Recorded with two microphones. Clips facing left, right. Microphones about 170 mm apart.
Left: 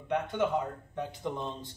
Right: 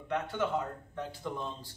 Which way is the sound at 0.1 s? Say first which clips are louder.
Left 3 dB; 20° left (ahead or behind).